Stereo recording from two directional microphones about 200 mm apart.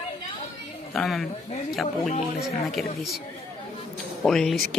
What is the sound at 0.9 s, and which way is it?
Speech, centre (ahead or behind).